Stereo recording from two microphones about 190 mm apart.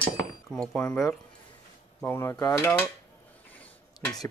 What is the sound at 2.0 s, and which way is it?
Speech, 15° left (ahead or behind).